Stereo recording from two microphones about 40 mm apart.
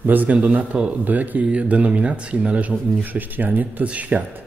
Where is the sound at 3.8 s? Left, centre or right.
Right.